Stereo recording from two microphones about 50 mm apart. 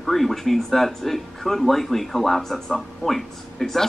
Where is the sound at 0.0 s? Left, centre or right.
Centre.